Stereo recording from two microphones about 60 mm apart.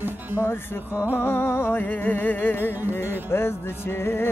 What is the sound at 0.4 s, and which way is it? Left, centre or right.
Speech, left.